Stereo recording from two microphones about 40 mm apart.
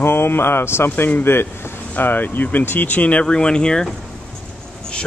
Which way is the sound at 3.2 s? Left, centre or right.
Left.